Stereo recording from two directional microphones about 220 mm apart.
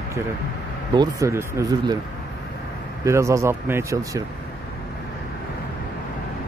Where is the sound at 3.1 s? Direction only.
15° right (ahead or behind).